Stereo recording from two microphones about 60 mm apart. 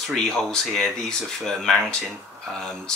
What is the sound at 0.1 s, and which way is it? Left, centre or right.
Speech, centre.